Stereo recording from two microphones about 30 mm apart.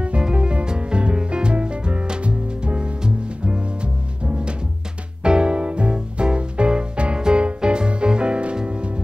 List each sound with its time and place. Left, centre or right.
0.2 s music: right
7.2 s music: right